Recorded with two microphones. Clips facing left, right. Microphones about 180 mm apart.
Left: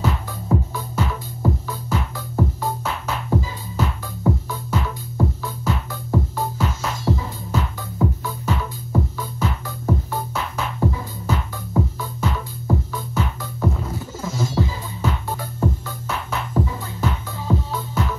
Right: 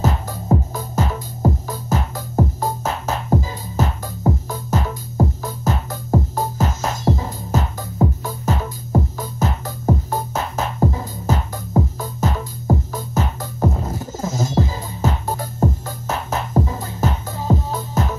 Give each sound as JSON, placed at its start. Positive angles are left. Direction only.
{"t": 0.0, "sound": "music", "side_deg": -40}